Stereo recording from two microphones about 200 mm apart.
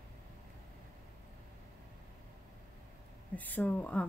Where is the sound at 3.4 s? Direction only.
10° left (ahead or behind).